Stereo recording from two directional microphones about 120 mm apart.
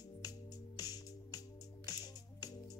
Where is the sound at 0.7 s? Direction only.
30° left (ahead or behind).